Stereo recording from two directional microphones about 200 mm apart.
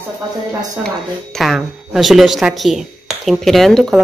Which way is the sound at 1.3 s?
Centre (ahead or behind).